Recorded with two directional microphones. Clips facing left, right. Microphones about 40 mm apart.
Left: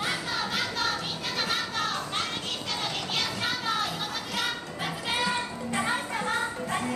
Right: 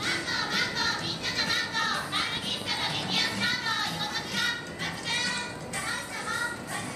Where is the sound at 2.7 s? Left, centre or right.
Centre.